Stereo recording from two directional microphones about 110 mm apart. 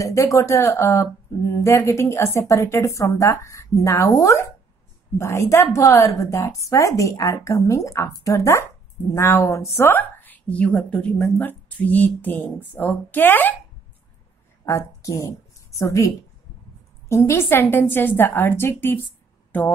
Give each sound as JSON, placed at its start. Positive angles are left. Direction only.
{"t": 0.0, "sound": "a woman's voice", "side_deg": 30}
{"t": 14.6, "sound": "a woman's voice", "side_deg": 25}
{"t": 17.1, "sound": "a woman's voice", "side_deg": 25}